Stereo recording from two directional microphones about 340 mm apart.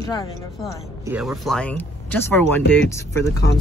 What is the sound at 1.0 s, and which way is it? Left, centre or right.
Speech, centre.